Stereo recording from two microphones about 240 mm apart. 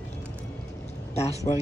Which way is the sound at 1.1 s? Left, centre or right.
Left.